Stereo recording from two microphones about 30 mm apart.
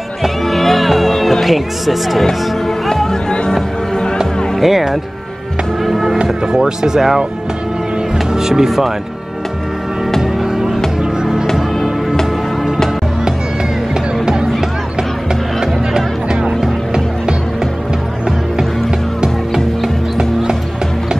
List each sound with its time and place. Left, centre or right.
0.5 s music: centre
1.4 s speech: centre
2.2 s music: centre
3.3 s music: left
4.6 s speech: centre
6.4 s speech: right
8.3 s speech: centre
10.2 s music: centre
14.2 s music: right
16.3 s music: right